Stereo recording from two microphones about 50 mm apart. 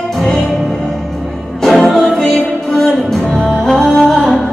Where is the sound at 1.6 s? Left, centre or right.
Centre.